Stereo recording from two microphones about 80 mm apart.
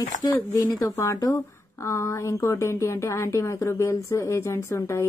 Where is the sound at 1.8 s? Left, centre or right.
Left.